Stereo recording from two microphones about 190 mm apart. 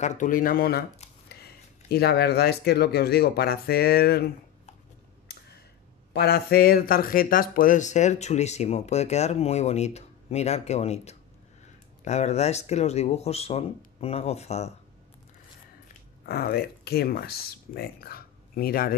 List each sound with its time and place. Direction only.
0.0 s speech: 40° left (ahead or behind); by 4.3 s 55° left (ahead or behind)
6.1 s speech: 55° left (ahead or behind); by 14.7 s 35° left (ahead or behind)
16.3 s speech: 55° left (ahead or behind)